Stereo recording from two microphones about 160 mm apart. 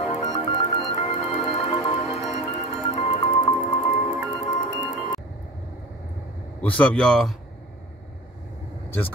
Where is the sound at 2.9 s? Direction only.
40° left (ahead or behind).